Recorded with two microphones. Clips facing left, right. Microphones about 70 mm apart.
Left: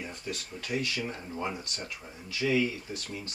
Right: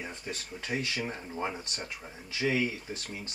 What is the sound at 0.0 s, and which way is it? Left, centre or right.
Speech, right.